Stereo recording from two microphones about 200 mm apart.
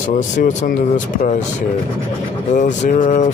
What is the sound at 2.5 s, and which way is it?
Speech, 40° left (ahead or behind).